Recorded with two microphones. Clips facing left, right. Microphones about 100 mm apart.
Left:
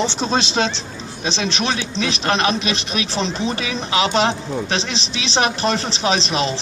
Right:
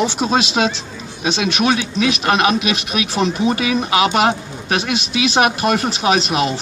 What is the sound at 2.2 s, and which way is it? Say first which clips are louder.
Speech: right 1 dB; 10° right (ahead or behind).